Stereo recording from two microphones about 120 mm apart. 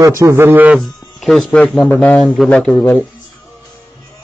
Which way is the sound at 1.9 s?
10° left (ahead or behind).